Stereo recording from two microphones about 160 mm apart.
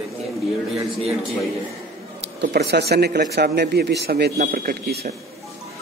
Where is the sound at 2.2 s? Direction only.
90° right; by 5.0 s 75° right (ahead or behind).